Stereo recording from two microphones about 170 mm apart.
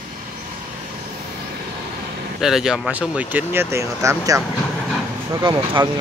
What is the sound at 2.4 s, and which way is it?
Speech, 5° right (ahead or behind).